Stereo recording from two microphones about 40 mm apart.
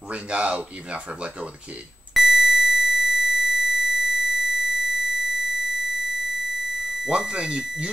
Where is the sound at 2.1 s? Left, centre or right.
Centre.